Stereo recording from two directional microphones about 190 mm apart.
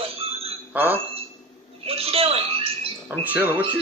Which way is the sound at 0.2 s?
30° right (ahead or behind).